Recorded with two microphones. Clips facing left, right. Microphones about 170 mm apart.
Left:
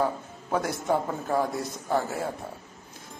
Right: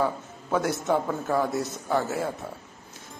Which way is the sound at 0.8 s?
5° left (ahead or behind).